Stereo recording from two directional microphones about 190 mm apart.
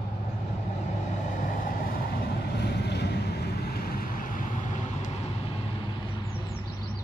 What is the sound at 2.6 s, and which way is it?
Boat, 60° left (ahead or behind).